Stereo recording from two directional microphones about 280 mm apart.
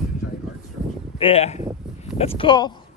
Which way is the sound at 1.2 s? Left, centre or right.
Left.